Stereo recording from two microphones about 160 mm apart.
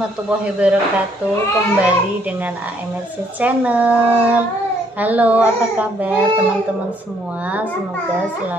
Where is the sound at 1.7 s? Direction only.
10° right (ahead or behind).